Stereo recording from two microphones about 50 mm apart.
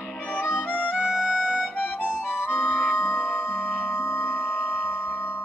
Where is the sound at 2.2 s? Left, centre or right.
Left.